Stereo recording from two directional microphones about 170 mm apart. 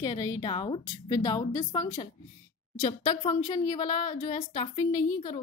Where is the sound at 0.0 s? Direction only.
20° left (ahead or behind).